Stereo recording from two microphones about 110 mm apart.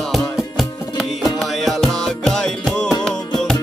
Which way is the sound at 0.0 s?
Centre (ahead or behind).